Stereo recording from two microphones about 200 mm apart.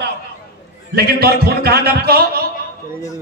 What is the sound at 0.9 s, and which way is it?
A man's voice, 50° right (ahead or behind).